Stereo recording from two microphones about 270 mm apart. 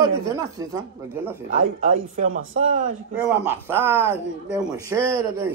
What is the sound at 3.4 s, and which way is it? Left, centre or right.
Speech, centre.